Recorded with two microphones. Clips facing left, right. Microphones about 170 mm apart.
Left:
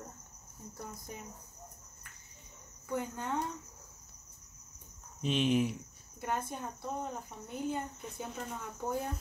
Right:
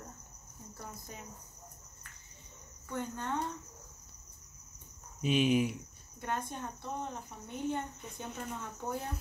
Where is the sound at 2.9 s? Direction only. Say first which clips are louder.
Left 2 dB; 10° left (ahead or behind).